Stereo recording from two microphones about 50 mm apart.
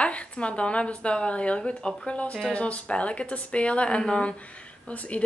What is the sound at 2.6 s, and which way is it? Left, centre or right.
A woman's voice, left.